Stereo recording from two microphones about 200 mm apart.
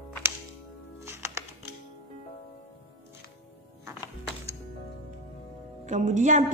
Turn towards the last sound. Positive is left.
turn(degrees=-35)  # may be behind; listen again after turning